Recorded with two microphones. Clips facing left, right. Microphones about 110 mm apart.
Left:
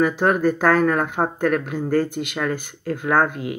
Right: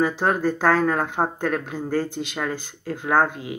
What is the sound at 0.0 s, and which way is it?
Speech, 25° right (ahead or behind).